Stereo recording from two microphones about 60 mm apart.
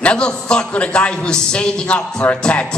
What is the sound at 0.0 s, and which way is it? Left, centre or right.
A man's voice, centre.